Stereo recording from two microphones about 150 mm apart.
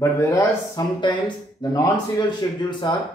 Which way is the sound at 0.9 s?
30° left (ahead or behind).